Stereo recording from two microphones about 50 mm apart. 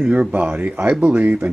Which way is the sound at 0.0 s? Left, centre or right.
Right.